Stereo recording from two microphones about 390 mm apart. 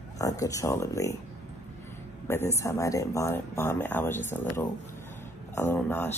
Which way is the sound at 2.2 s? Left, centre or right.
Centre.